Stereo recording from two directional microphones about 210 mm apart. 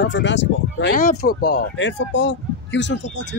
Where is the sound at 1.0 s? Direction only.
40° left (ahead or behind).